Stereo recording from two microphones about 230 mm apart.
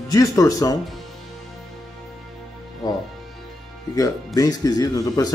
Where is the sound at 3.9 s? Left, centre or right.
Centre.